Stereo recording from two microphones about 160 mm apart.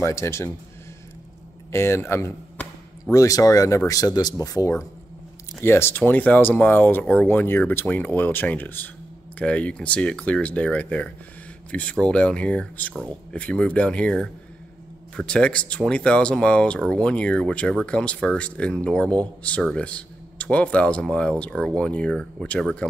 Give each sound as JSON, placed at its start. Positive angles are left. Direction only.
{"t": 0.0, "sound": "speech", "side_deg": 15}
{"t": 1.7, "sound": "speech", "side_deg": 15}